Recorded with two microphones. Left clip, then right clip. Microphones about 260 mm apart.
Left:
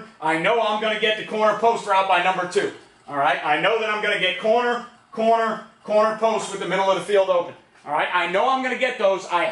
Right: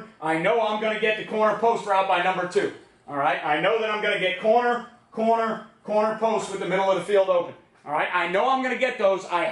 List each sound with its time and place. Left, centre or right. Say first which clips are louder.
0.2 s a man's voice: left 2 dB; centre